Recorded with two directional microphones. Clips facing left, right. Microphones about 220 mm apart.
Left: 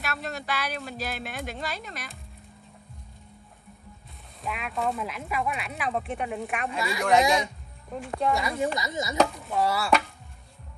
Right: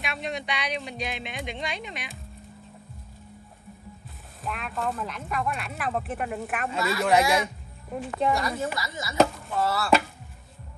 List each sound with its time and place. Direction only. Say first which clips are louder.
0.0 s speech: right 2 dB; centre (ahead or behind)
4.4 s speech: left 1 dB; centre (ahead or behind)
6.8 s speech: even; 15° left (ahead or behind)
8.3 s speech: even; centre (ahead or behind)
8.7 s speech: left 4 dB; 20° left (ahead or behind)
9.1 s speech: right 3 dB; centre (ahead or behind)
9.6 s speech: left 1 dB; 15° left (ahead or behind)